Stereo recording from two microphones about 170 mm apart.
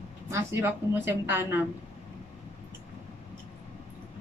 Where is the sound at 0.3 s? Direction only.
15° right (ahead or behind).